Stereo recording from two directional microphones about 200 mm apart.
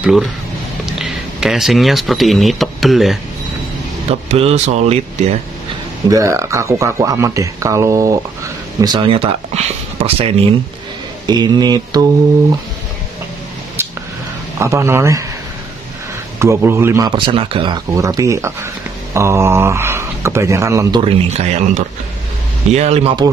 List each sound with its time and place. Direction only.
0.0 s speech: centre (ahead or behind)
4.1 s speech: 30° right (ahead or behind)
6.0 s speech: 15° right (ahead or behind)
13.8 s a sound: 10° right (ahead or behind)
14.6 s speech: 15° right (ahead or behind)
16.3 s speech: 15° right (ahead or behind)
21.0 s speech: 30° right (ahead or behind)